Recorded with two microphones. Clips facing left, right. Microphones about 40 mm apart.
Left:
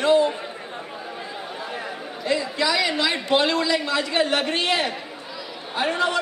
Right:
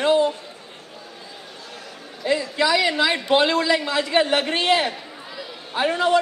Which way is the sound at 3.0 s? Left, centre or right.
Centre.